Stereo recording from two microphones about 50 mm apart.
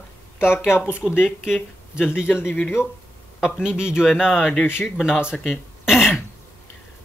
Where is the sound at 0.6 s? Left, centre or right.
Left.